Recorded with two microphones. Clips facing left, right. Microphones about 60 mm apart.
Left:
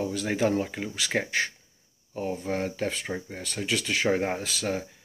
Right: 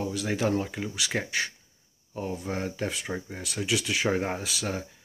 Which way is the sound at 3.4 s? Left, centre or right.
Centre.